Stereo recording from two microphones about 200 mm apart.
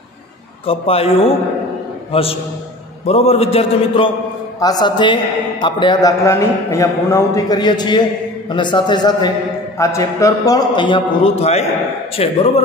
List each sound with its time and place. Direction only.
0.7 s a man's voice: 30° left (ahead or behind)